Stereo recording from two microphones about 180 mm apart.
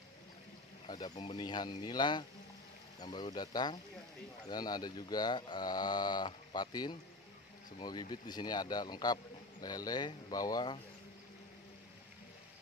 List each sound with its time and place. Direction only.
0.8 s a man's voice: 25° left (ahead or behind)